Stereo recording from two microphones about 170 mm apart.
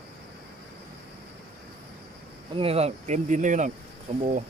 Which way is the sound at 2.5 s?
35° right (ahead or behind).